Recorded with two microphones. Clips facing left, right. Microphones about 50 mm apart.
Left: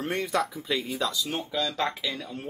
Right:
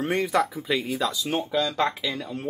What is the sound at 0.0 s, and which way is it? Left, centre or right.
Speech, centre.